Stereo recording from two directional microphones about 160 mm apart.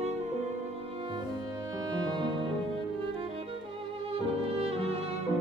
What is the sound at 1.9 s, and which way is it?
Music, 25° right (ahead or behind).